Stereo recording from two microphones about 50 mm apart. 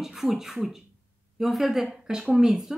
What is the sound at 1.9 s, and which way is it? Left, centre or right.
Speech, centre.